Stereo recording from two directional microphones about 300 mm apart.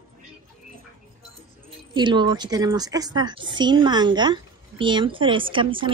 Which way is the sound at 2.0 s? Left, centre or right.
Centre.